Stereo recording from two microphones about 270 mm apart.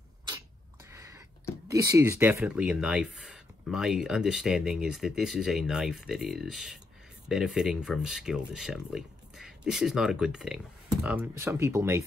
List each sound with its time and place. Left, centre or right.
1.7 s speech: centre